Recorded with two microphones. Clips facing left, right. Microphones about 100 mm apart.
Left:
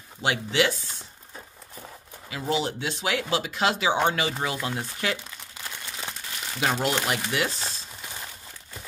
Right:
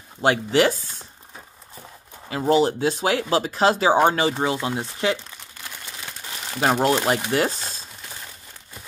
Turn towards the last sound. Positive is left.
turn(degrees=-35)  # may be behind; listen again after turning